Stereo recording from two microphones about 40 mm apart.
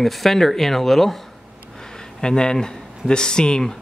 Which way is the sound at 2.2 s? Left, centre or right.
Centre.